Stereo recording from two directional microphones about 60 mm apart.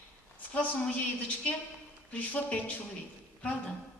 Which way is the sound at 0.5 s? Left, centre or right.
Left.